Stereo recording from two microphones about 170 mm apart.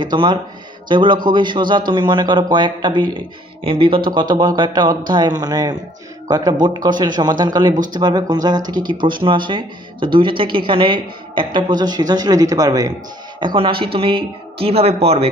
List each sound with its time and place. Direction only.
0.0 s a woman's voice: 25° right (ahead or behind)